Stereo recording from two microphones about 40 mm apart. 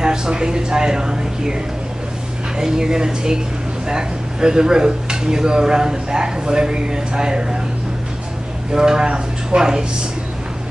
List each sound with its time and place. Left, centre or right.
0.0 s speech: centre
8.7 s speech: centre